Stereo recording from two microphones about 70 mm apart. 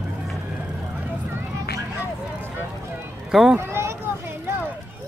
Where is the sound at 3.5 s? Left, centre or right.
Right.